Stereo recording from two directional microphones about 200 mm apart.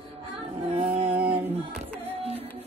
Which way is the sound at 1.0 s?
10° right (ahead or behind).